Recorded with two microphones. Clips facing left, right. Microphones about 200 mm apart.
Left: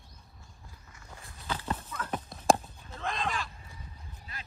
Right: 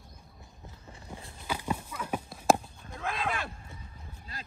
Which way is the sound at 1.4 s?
10° right (ahead or behind).